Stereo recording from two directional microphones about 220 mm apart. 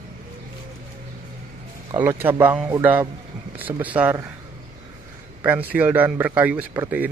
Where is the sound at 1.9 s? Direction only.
10° right (ahead or behind).